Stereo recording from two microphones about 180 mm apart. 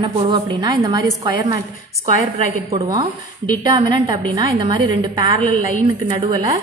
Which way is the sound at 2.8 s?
20° right (ahead or behind).